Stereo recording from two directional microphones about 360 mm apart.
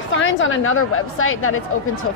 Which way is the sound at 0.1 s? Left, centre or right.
Left.